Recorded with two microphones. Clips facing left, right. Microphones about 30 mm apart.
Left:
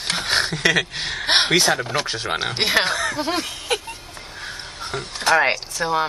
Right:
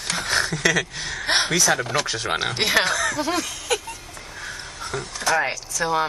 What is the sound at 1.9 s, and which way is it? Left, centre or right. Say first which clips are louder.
Speech: even; left.